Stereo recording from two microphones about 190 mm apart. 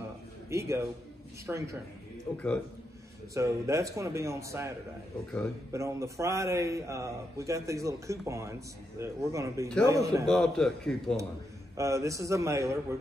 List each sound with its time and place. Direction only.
0.5 s a man's voice: 15° right (ahead or behind)
2.3 s a man's voice: 5° left (ahead or behind)
3.3 s a man's voice: 15° right (ahead or behind)
10.2 s a man's voice: 5° left (ahead or behind)
11.7 s a man's voice: 15° right (ahead or behind)